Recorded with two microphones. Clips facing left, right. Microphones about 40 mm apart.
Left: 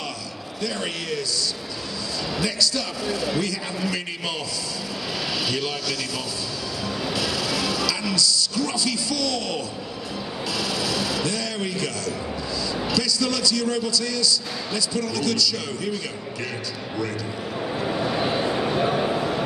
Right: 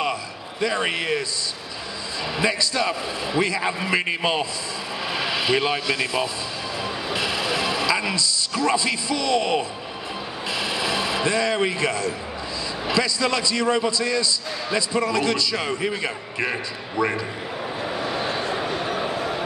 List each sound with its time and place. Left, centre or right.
0.6 s a man's voice: right
2.3 s a man's voice: right
7.1 s a sound: right
12.8 s a man's voice: right
17.8 s vehicle: centre
18.5 s a sound: centre
18.8 s bow-wow: centre